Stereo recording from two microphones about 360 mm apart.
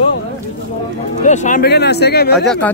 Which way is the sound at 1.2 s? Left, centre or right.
Centre.